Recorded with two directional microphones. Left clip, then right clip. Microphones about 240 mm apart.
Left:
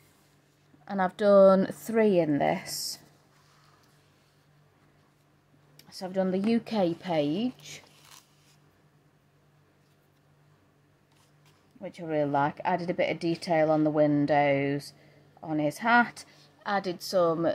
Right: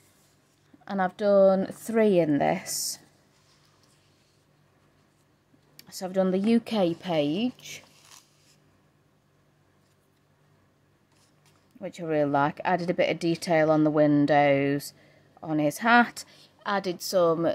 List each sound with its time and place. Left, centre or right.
0.8 s speech: centre
1.9 s speech: centre
5.8 s speech: centre
11.8 s speech: centre